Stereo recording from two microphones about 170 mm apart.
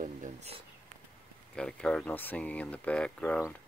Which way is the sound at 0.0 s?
45° right (ahead or behind).